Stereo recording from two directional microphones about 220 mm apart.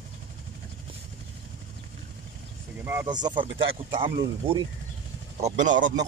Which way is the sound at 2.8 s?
10° right (ahead or behind).